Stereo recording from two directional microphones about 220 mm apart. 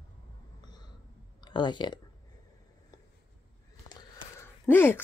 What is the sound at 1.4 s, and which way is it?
Speech, 20° left (ahead or behind).